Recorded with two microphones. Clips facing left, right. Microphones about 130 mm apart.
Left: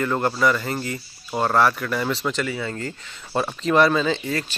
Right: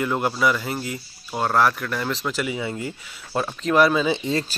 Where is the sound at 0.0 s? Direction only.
5° right (ahead or behind).